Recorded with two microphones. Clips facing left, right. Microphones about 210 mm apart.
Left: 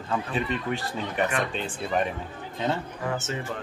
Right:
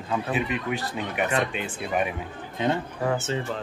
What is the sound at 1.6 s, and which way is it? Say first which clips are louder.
Speech: even; 10° right (ahead or behind).